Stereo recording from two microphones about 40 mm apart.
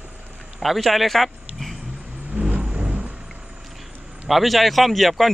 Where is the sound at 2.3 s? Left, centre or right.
Right.